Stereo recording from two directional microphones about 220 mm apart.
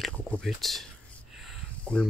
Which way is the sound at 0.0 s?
Centre (ahead or behind).